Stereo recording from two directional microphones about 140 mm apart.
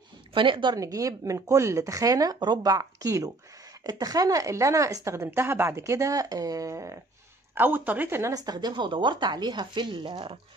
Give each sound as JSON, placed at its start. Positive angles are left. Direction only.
{"t": 0.3, "sound": "speech", "side_deg": -35}